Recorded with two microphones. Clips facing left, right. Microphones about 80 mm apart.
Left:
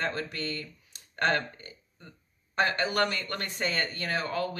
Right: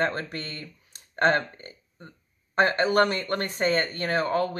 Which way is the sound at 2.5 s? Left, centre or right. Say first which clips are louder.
Right 6 dB; right.